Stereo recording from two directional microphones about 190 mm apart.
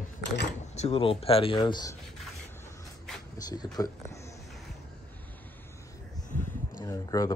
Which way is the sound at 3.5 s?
20° left (ahead or behind).